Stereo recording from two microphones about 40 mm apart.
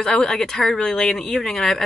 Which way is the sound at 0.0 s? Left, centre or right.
Centre.